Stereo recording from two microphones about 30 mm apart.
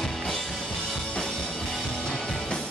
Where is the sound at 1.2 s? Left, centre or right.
Left.